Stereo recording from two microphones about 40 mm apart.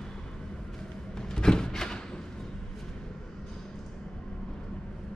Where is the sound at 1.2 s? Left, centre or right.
Centre.